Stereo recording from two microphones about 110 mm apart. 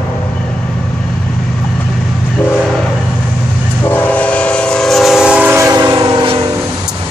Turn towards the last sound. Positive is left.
turn(degrees=-40)  # may be behind; listen again after turning